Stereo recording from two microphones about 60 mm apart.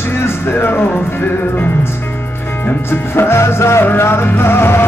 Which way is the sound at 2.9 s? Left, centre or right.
Left.